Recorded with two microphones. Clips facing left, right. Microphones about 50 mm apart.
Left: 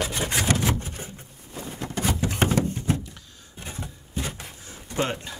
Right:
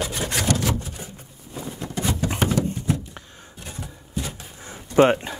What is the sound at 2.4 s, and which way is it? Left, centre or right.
Music, left.